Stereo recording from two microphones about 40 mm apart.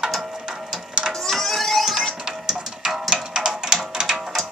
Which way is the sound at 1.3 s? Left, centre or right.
Centre.